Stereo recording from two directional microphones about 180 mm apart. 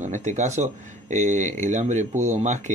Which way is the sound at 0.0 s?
40° right (ahead or behind).